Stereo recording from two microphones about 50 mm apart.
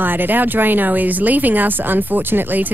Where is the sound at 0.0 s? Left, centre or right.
Right.